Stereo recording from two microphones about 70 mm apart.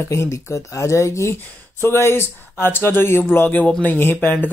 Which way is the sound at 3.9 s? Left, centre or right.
Left.